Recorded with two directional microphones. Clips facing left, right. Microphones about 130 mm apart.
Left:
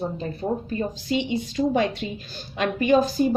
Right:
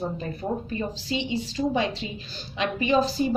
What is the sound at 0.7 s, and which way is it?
Speech, 50° left (ahead or behind).